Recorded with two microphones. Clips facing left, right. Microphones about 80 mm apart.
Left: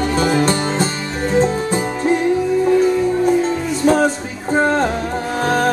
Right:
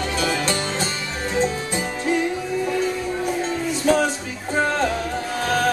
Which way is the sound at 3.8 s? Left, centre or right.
Left.